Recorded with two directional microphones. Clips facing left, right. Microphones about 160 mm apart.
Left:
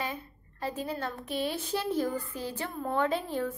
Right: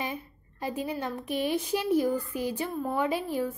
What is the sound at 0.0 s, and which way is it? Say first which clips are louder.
A woman's voice: right 1 dB; 15° right (ahead or behind).